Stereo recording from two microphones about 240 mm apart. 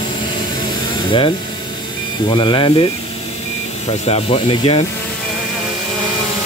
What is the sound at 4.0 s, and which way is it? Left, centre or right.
Speech, left.